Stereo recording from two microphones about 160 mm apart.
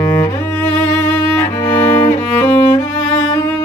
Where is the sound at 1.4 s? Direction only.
20° left (ahead or behind).